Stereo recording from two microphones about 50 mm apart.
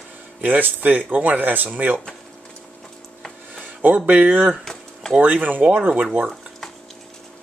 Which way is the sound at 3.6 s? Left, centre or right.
Right.